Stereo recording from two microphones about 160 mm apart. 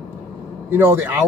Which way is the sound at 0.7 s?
15° right (ahead or behind).